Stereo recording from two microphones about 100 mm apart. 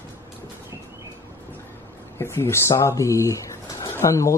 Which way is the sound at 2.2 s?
25° left (ahead or behind).